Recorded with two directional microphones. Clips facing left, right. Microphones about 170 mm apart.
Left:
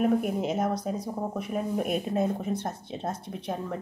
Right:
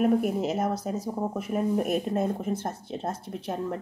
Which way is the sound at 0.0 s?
5° right (ahead or behind).